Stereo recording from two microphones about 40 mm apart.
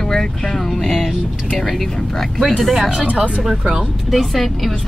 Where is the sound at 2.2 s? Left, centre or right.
Centre.